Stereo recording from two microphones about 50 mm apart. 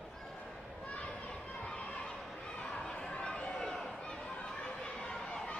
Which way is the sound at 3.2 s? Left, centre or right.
Centre.